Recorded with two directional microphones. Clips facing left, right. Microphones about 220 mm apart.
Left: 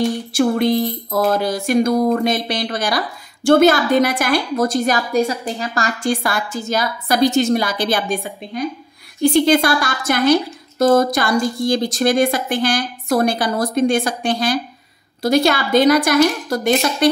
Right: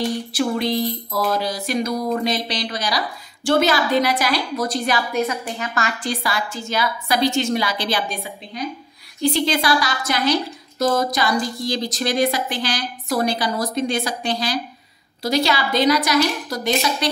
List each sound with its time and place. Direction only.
0.4 s a woman's voice: 50° left (ahead or behind)
6.0 s a woman's voice: 50° left (ahead or behind)